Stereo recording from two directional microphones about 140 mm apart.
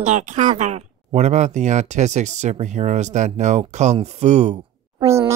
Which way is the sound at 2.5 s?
55° right (ahead or behind).